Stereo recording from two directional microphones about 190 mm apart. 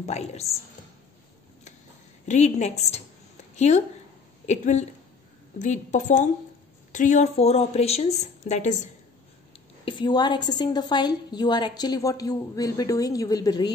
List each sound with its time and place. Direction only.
0.0 s a woman's voice: 35° left (ahead or behind)
2.2 s a woman's voice: 35° left (ahead or behind)
9.8 s a woman's voice: 25° left (ahead or behind)